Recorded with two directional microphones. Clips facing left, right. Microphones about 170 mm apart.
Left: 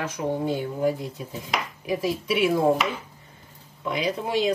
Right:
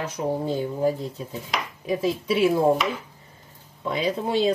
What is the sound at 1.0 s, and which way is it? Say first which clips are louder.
Speech: right 2 dB; 10° left (ahead or behind).